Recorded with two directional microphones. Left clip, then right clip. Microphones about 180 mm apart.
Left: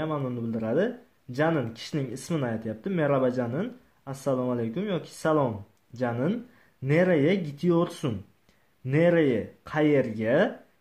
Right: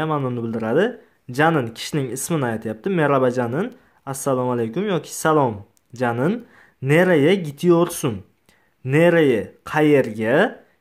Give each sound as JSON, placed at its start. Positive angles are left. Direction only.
{"t": 0.0, "sound": "speech", "side_deg": -35}